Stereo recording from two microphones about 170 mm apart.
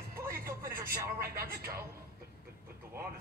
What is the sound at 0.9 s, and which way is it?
Speech, 65° right (ahead or behind).